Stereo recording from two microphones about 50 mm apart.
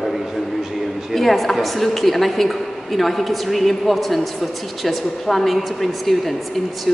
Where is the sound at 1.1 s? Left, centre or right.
Centre.